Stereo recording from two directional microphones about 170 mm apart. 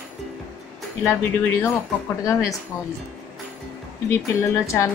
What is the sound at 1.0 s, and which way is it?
Speech, 15° left (ahead or behind).